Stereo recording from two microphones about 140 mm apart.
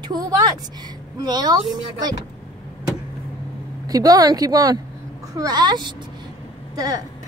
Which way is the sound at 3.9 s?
25° right (ahead or behind).